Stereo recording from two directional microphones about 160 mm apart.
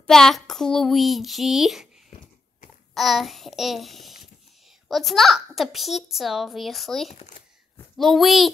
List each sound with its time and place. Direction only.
0.0 s a child's voice: centre (ahead or behind)
2.9 s a child's voice: centre (ahead or behind)